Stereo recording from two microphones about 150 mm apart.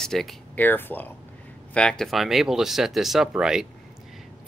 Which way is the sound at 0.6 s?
15° left (ahead or behind).